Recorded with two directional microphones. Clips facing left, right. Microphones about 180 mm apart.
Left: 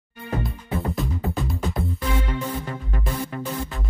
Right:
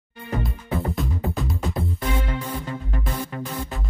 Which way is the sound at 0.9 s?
Centre (ahead or behind).